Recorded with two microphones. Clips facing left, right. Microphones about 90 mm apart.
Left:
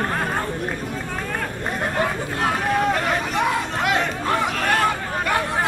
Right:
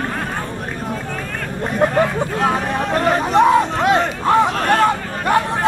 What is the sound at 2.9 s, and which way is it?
Hubbub, 35° right (ahead or behind).